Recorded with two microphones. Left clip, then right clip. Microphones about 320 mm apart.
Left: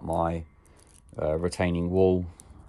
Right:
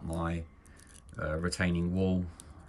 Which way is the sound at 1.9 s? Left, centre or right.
Left.